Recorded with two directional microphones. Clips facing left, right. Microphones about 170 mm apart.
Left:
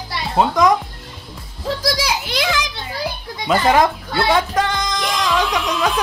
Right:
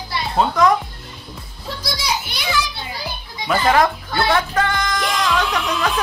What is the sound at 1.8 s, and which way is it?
Speech, 90° left.